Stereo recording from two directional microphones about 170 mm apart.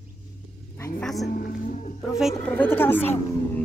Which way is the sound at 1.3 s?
50° left (ahead or behind).